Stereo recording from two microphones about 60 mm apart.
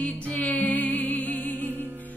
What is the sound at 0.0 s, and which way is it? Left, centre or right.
Music, left.